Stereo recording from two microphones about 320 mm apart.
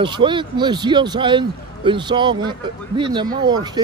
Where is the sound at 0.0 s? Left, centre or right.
Centre.